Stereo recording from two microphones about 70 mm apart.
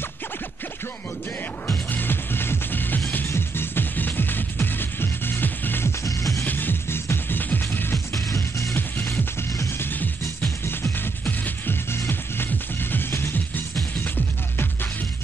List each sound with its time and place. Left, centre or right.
1.9 s music: left
6.0 s music: left
6.4 s music: left
8.7 s music: left